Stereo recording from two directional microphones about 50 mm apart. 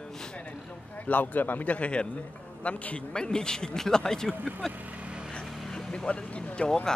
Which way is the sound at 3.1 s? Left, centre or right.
Centre.